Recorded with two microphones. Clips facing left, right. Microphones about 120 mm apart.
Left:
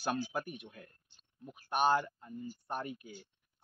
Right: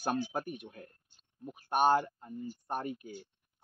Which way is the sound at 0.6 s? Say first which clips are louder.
Right 3 dB; 35° right (ahead or behind).